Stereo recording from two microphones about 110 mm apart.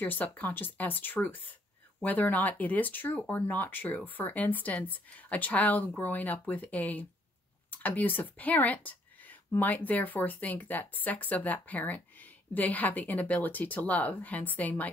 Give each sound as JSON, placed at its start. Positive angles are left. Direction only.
{"t": 0.0, "sound": "speech", "side_deg": 15}